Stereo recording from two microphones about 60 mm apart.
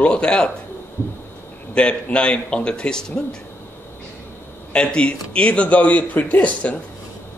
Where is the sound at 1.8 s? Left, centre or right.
Centre.